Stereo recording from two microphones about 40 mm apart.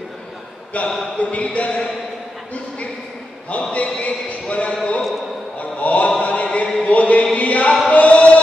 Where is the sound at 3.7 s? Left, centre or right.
Left.